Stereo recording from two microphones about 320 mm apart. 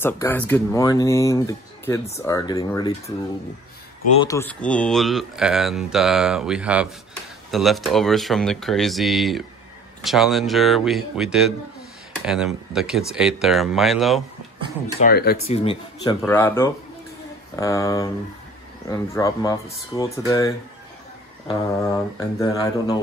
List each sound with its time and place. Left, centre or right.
0.0 s speech: centre
4.2 s speech: centre
15.0 s speech: left; by 22.9 s centre